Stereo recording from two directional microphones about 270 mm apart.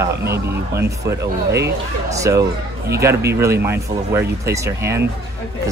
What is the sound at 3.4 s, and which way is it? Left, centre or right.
Speech, centre.